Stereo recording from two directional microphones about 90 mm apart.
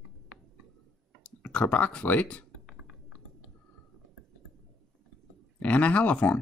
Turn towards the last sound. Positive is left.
turn(degrees=15)  # may be behind; listen again after turning